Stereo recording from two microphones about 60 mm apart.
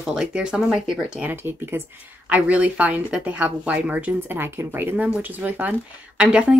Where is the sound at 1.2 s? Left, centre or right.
Right.